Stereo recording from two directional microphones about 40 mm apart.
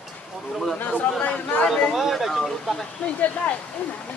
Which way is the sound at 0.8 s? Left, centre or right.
Left.